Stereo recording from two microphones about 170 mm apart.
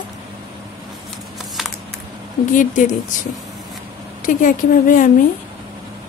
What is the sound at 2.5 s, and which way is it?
Speech, 50° left (ahead or behind).